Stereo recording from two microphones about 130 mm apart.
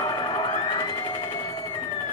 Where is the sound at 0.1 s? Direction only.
35° left (ahead or behind).